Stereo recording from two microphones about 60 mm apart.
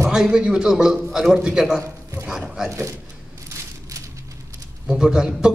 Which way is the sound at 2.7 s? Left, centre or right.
Right.